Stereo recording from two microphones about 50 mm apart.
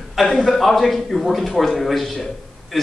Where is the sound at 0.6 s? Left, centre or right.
Centre.